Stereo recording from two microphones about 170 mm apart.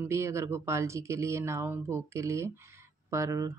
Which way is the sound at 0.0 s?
15° right (ahead or behind).